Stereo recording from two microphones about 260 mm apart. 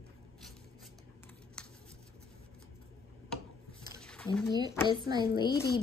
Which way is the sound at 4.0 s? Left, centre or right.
Centre.